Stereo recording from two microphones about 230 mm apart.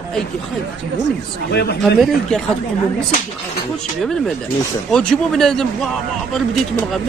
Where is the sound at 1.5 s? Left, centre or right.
Left.